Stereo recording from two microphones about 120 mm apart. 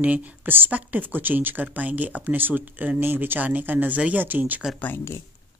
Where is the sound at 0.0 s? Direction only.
15° right (ahead or behind).